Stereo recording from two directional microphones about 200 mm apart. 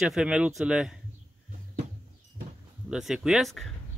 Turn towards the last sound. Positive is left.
turn(degrees=0)  # may be behind; listen again after turning